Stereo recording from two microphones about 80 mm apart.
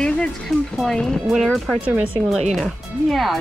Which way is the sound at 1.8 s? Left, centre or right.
Centre.